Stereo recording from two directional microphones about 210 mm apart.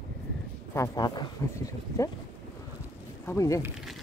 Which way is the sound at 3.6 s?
5° right (ahead or behind).